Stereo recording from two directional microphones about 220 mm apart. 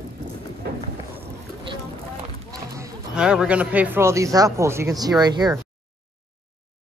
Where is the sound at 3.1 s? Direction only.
5° right (ahead or behind).